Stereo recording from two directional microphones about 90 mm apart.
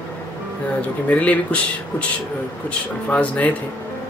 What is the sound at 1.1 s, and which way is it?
Speech, 15° left (ahead or behind).